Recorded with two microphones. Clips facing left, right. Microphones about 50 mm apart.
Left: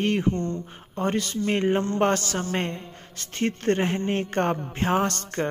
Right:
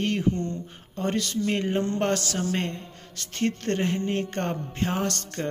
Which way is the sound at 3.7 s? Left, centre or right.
Left.